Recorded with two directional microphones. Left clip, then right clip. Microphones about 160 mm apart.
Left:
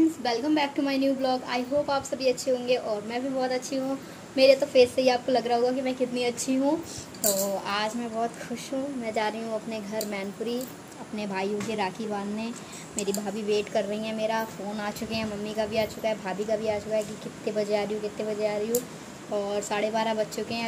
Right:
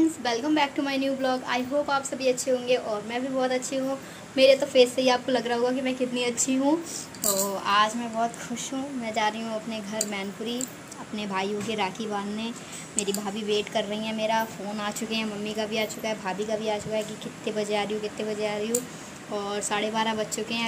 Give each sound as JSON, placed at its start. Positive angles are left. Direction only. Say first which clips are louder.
{"t": 0.2, "sound": "a woman's voice", "louder": "right 1 dB", "side_deg": 0}
{"t": 7.6, "sound": "a woman's voice", "louder": "right 6 dB", "side_deg": 5}
{"t": 13.5, "sound": "a woman's voice", "louder": "even", "side_deg": 0}